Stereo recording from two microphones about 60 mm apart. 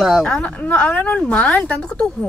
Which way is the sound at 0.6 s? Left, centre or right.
Left.